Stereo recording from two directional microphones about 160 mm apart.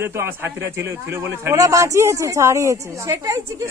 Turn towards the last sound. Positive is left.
turn(degrees=-20)  # may be behind; listen again after turning